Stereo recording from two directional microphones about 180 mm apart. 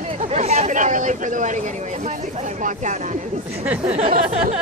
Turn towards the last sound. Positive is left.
turn(degrees=-40)  # may be behind; listen again after turning